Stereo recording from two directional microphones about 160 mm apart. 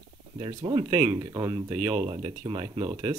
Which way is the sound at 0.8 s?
15° right (ahead or behind).